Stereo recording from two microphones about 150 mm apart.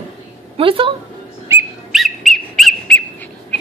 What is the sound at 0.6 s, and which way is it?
Speech, 35° right (ahead or behind).